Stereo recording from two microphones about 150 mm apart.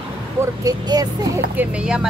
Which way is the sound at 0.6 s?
25° right (ahead or behind).